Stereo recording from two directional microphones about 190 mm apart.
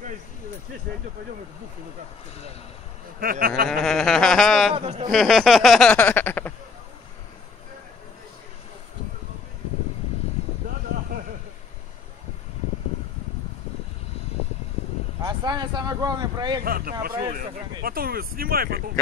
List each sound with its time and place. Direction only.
3.2 s speech: 50° right (ahead or behind)
3.6 s speech: centre (ahead or behind)
4.7 s speech: 30° right (ahead or behind)
5.1 s speech: centre (ahead or behind)
15.2 s vehicle: 20° right (ahead or behind)
16.6 s speech: 50° right (ahead or behind)